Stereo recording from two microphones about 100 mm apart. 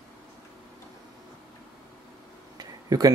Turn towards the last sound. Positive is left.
turn(degrees=-35)  # may be behind; listen again after turning